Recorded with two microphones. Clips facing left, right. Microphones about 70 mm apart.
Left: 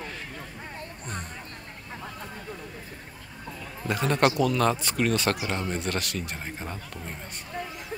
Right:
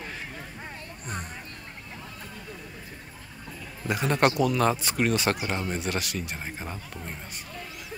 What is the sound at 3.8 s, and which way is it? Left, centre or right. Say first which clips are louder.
A man's voice: even; centre.